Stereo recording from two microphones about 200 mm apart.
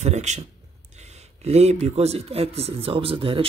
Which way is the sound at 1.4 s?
35° right (ahead or behind).